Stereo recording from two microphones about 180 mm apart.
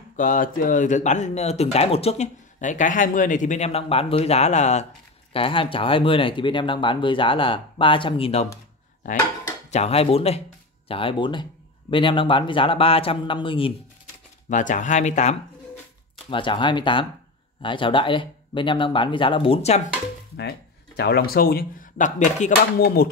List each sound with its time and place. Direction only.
0.1 s speech: 45° left (ahead or behind)
9.7 s speech: 35° left (ahead or behind)
14.5 s speech: 45° left (ahead or behind)
16.3 s speech: 30° left (ahead or behind)
20.3 s speech: 65° left (ahead or behind)